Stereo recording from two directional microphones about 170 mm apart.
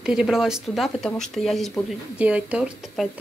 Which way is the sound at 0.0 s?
5° right (ahead or behind).